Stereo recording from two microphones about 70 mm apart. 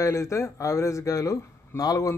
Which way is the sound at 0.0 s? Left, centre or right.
Left.